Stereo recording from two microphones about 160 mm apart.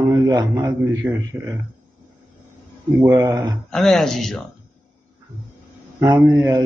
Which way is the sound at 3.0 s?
15° right (ahead or behind).